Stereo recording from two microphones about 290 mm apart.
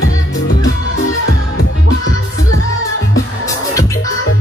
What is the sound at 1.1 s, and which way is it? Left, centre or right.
Music, left.